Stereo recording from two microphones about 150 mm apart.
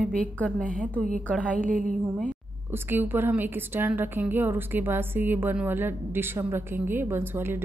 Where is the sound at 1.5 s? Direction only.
60° right (ahead or behind).